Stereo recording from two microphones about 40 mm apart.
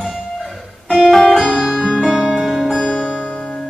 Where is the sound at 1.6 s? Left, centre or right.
Centre.